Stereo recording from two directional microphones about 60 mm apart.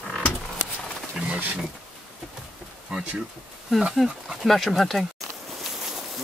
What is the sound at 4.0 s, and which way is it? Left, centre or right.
Speech, centre.